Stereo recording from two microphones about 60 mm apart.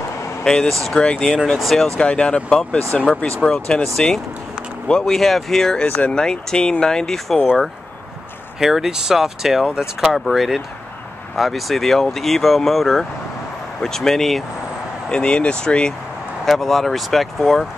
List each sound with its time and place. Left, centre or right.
0.4 s speech: centre
2.0 s speech: centre
5.9 s speech: left
6.1 s speech: centre
8.5 s speech: centre
15.0 s speech: centre
16.4 s speech: centre